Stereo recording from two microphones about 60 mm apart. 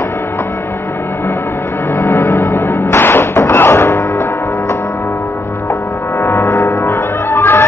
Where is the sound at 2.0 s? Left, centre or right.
Left.